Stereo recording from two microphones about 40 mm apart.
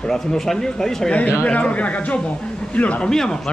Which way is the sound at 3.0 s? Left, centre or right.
Centre.